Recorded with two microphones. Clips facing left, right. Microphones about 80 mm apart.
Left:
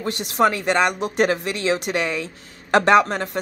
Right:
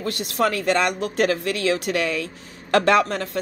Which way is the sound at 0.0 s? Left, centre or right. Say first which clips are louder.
Left 3 dB; left.